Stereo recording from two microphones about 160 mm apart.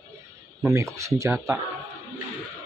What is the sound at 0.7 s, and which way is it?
Speech, 20° right (ahead or behind).